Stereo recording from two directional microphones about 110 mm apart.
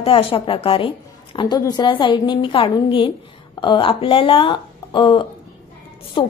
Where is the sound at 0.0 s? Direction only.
50° left (ahead or behind).